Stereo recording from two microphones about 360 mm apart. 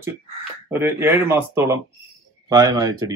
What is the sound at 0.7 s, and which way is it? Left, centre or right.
Speech, centre.